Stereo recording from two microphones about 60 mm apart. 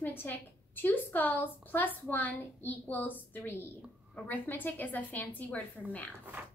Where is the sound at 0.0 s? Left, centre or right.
Left.